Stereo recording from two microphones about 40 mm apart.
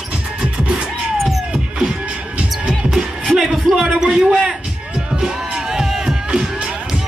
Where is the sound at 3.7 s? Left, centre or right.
Centre.